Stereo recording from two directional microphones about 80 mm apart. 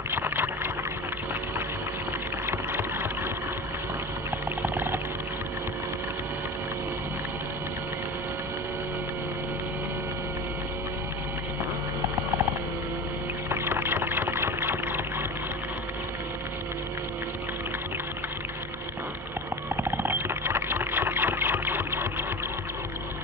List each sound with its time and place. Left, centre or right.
0.1 s liquid: right
2.5 s a sound: right
13.5 s music: right
19.8 s engine: right